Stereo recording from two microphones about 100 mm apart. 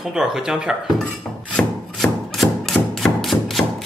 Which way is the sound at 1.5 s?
5° left (ahead or behind).